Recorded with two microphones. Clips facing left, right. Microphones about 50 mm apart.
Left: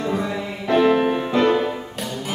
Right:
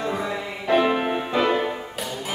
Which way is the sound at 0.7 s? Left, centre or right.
Centre.